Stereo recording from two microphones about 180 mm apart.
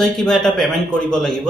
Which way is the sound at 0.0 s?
5° left (ahead or behind).